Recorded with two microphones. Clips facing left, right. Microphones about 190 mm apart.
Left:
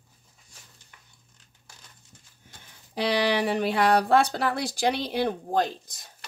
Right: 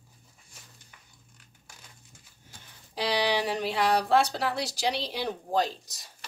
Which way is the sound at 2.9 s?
55° left (ahead or behind).